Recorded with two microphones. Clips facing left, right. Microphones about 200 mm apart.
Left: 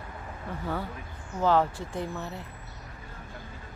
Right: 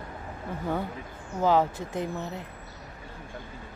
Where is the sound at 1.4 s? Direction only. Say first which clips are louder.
Right 1 dB; 15° right (ahead or behind).